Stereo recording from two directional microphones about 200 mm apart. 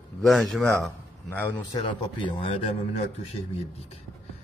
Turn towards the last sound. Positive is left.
turn(degrees=30)  # may be behind; listen again after turning